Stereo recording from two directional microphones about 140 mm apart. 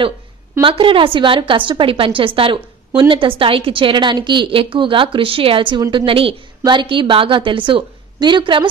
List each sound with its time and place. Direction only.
0.6 s a woman's voice: 40° right (ahead or behind)